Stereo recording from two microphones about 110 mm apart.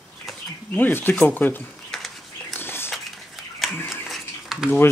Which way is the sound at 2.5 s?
20° left (ahead or behind).